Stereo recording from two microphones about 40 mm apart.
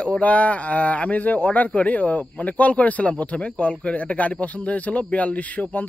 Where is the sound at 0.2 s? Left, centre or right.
Left.